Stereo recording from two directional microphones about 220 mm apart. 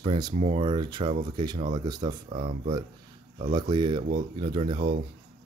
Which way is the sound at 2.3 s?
35° right (ahead or behind).